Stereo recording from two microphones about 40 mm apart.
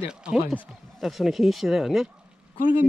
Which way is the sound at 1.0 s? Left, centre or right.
Centre.